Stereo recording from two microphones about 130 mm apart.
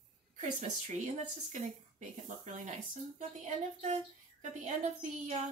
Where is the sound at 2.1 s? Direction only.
65° right (ahead or behind).